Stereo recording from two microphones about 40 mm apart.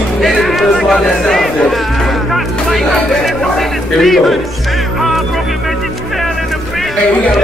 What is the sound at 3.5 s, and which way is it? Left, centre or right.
Speech, centre.